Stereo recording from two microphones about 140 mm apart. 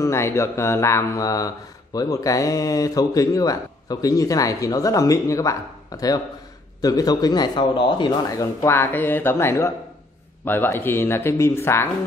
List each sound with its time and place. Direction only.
0.0 s a man's voice: 20° left (ahead or behind)